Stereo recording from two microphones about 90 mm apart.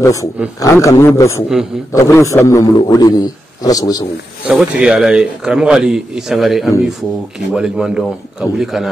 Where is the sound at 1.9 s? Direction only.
35° left (ahead or behind).